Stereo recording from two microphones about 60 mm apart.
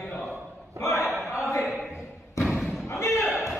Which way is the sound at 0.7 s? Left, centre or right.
Left.